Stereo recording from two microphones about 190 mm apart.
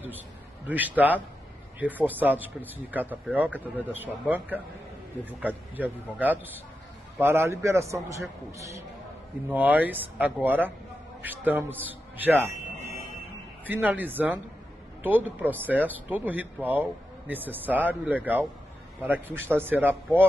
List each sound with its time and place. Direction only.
0.7 s speech: 10° right (ahead or behind)
11.8 s a sound: 10° right (ahead or behind)
13.7 s speech: 10° right (ahead or behind)